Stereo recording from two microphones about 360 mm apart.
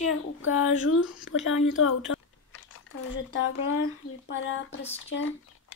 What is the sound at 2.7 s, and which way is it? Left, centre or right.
Speech, left.